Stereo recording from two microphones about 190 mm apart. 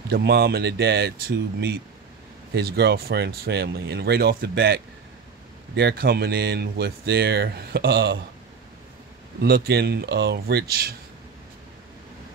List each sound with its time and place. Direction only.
0.1 s speech: 60° right (ahead or behind)
9.4 s speech: 55° right (ahead or behind)